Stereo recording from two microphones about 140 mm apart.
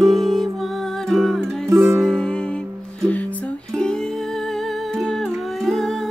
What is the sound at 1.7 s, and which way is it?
Music, 20° right (ahead or behind).